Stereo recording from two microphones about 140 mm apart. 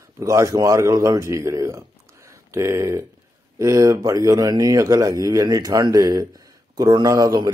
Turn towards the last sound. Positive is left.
turn(degrees=-25)  # may be behind; listen again after turning